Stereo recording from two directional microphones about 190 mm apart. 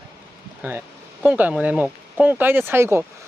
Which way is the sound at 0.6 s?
10° right (ahead or behind).